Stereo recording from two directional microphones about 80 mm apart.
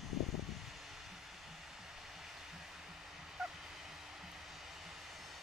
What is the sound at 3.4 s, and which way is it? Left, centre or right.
Fowl, centre.